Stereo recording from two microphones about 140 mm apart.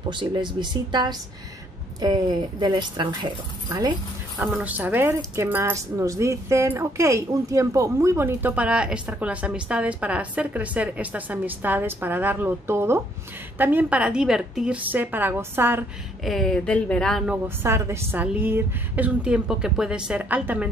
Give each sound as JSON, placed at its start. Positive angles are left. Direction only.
{"t": 0.1, "sound": "speech", "side_deg": -35}
{"t": 4.5, "sound": "speech", "side_deg": -10}
{"t": 16.3, "sound": "speech", "side_deg": 5}
{"t": 17.6, "sound": "speech", "side_deg": -20}